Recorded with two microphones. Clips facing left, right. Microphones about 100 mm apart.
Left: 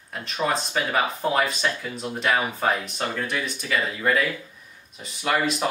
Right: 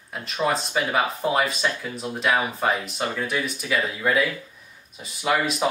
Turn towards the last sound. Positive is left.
turn(degrees=-5)  # may be behind; listen again after turning